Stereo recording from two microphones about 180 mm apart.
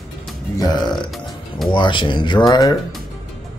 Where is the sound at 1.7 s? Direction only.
25° left (ahead or behind).